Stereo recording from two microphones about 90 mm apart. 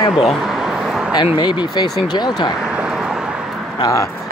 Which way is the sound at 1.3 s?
50° left (ahead or behind).